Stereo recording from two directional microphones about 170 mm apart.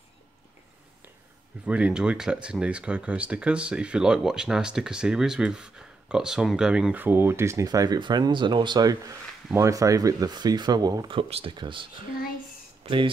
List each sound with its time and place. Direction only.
1.7 s speech: 5° right (ahead or behind); by 13.1 s 30° right (ahead or behind)